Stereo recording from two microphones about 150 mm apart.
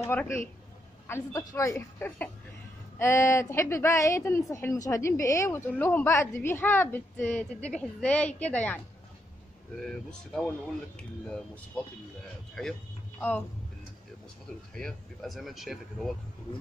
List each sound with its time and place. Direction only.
0.0 s a woman's voice: 15° left (ahead or behind)
14.7 s speech: 5° left (ahead or behind)